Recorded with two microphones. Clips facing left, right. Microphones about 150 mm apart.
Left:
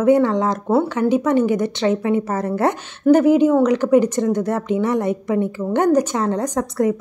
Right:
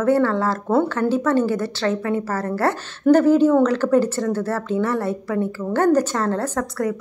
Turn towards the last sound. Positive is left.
turn(degrees=20)  # may be behind; listen again after turning